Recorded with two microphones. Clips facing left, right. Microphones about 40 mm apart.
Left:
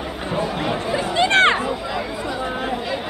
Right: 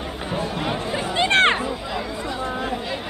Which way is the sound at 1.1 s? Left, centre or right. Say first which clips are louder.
Left 2 dB; right.